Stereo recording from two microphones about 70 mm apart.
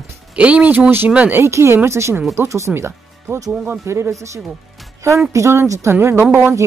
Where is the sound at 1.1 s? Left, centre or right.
Centre.